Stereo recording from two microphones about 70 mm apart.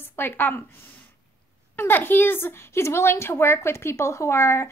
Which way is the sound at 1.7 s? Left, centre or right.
Left.